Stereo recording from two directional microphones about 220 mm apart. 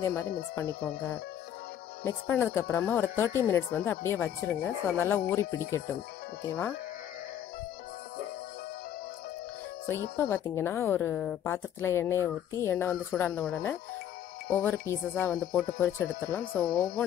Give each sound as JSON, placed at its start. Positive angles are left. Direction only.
{"t": 0.0, "sound": "speech", "side_deg": 10}
{"t": 10.1, "sound": "speech", "side_deg": 10}
{"t": 16.6, "sound": "speech", "side_deg": 40}